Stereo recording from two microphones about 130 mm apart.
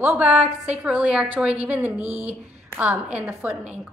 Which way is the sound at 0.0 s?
15° right (ahead or behind).